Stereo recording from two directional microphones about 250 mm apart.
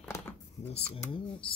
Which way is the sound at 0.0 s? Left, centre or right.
Centre.